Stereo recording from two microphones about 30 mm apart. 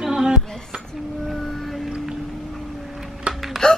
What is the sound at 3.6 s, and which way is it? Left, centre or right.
Gasp, left.